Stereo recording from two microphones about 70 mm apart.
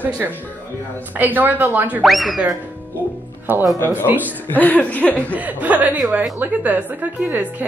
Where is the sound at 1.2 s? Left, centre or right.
Right.